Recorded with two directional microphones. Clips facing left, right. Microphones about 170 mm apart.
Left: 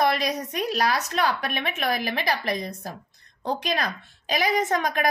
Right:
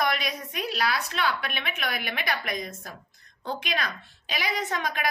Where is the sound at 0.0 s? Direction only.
40° left (ahead or behind).